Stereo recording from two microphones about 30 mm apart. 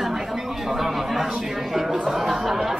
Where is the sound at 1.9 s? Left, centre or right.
Centre.